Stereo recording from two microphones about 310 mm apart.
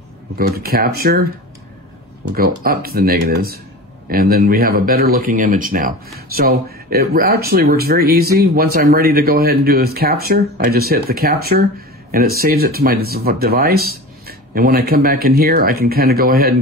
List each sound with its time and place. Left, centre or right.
0.4 s speech: right
2.2 s speech: right